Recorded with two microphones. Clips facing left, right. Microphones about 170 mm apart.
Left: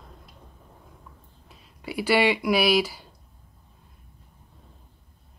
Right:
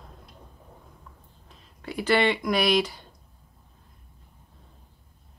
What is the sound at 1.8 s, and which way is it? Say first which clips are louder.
Speech: left 1 dB; 10° left (ahead or behind).